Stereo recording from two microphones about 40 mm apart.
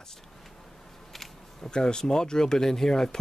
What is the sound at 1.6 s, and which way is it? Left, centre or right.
Speech, centre.